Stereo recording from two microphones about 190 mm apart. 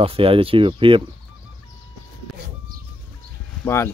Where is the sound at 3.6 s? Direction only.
15° left (ahead or behind).